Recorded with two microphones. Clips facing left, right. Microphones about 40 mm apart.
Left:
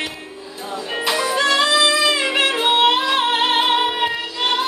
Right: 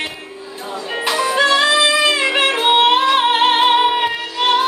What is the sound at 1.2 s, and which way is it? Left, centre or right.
Music, right.